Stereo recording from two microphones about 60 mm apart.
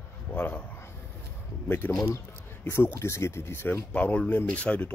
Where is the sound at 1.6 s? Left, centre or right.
Left.